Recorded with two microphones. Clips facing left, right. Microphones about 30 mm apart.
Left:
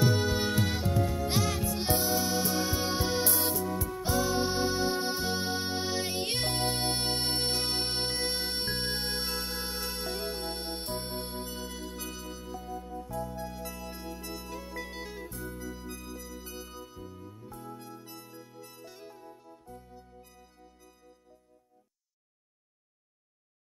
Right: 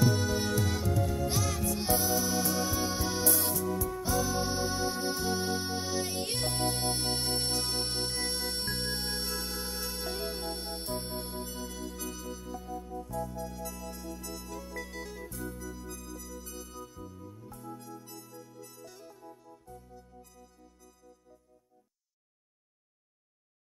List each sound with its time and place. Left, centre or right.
0.0 s music: left
9.8 s music: left
10.0 s music: left
10.5 s music: left